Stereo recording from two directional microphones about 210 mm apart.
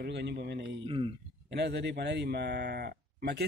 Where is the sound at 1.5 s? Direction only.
50° right (ahead or behind).